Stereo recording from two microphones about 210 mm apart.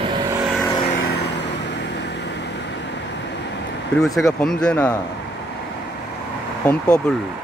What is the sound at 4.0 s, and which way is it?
Speech, centre (ahead or behind).